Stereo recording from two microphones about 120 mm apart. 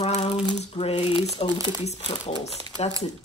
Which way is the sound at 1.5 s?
35° right (ahead or behind).